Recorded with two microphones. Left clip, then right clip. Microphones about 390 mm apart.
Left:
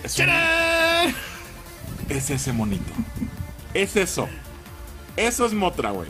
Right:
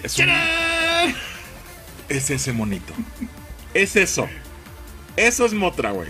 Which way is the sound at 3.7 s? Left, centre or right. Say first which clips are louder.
Right 5 dB; centre.